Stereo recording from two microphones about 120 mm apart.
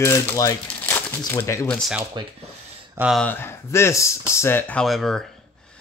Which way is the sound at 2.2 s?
40° right (ahead or behind).